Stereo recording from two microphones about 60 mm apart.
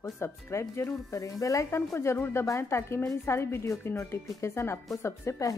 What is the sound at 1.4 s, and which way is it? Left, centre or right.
Speech, left.